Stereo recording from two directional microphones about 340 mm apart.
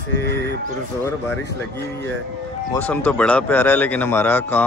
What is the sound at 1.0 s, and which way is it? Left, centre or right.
Speech, centre.